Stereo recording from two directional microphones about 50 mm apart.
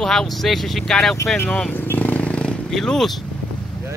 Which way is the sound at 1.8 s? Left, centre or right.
Left.